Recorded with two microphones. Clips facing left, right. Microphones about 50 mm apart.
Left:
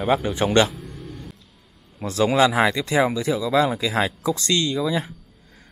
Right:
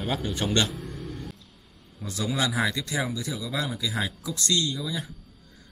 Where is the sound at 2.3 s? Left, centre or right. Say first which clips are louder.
Left 8 dB; left.